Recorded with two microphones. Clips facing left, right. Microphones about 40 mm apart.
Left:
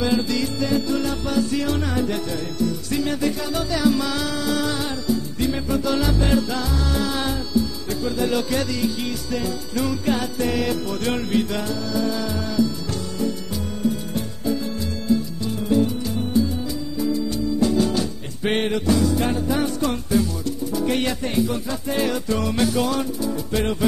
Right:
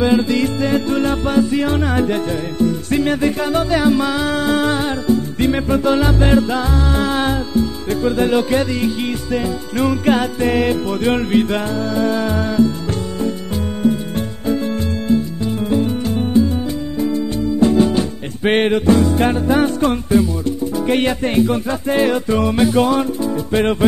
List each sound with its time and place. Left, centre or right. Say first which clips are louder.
0.0 s music: right 7 dB; right
1.4 s music: right 4 dB; right
13.8 s music: right 6 dB; right